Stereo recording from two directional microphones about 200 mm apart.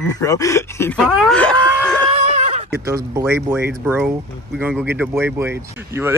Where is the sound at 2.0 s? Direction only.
30° right (ahead or behind).